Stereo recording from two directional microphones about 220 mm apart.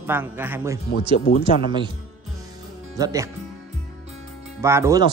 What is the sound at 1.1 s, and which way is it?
Speech, 45° left (ahead or behind).